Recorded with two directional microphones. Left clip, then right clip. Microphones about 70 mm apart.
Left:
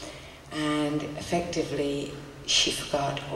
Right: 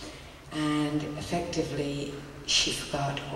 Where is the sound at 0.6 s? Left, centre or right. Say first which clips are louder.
Left 1 dB; left.